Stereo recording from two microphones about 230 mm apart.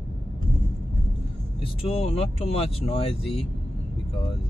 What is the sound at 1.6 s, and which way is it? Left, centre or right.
Speech, left.